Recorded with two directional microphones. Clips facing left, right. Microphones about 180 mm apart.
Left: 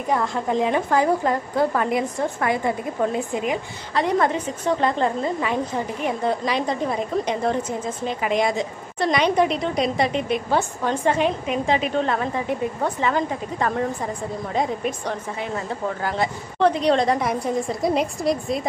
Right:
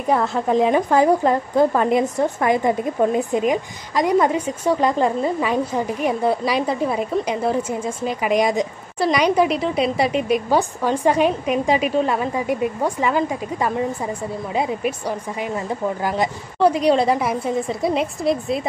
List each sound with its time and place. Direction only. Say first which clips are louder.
0.5 s a woman's voice: right 4 dB; 15° right (ahead or behind); by 18.6 s centre (ahead or behind)